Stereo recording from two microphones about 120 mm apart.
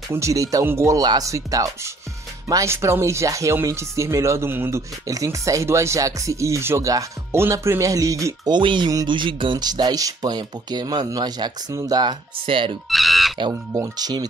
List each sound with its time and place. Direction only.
0.1 s speech: 25° right (ahead or behind)
8.5 s speech: 40° right (ahead or behind)
12.9 s a sound: centre (ahead or behind)
13.5 s speech: 30° right (ahead or behind)